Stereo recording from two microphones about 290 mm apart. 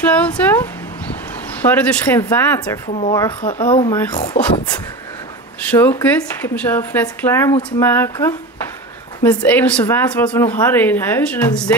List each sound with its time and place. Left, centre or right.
0.0 s a sound: centre
1.6 s speech: centre
3.4 s speech: left
5.6 s speech: centre